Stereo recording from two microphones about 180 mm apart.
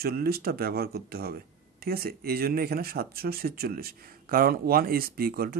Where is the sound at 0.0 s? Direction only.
60° right (ahead or behind).